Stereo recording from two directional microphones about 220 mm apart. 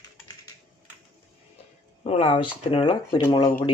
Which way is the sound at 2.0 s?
25° left (ahead or behind).